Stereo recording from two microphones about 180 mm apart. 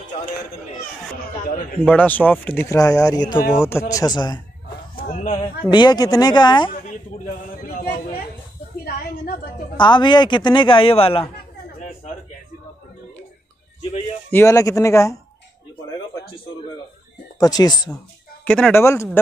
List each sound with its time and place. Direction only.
1.4 s a man's voice: 50° left (ahead or behind)
1.9 s a man's voice: 10° left (ahead or behind)
5.0 s speech: 40° left (ahead or behind)
5.7 s a man's voice: 25° left (ahead or behind)
6.7 s a sound: 45° left (ahead or behind)
7.6 s a sound: 55° left (ahead or behind)
9.8 s a man's voice: 25° left (ahead or behind)
14.3 s speech: 15° left (ahead or behind)
17.4 s a man's voice: 20° left (ahead or behind)
18.4 s speech: 5° left (ahead or behind)